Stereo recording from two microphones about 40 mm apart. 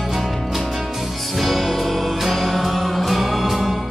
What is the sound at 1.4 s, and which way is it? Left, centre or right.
Music, centre.